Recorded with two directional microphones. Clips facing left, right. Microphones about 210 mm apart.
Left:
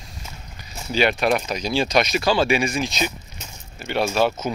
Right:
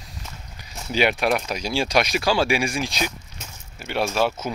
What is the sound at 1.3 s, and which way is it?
Speech, 5° right (ahead or behind).